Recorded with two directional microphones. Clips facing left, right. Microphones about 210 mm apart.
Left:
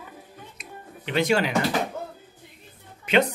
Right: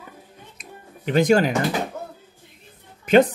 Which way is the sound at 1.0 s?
45° right (ahead or behind).